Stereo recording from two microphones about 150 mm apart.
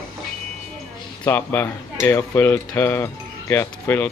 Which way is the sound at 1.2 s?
15° left (ahead or behind).